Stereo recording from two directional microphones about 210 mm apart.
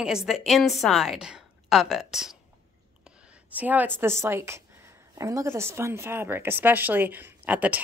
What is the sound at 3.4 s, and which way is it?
A woman's voice, 10° right (ahead or behind).